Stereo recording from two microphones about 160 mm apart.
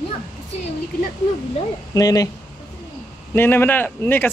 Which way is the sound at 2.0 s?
20° left (ahead or behind).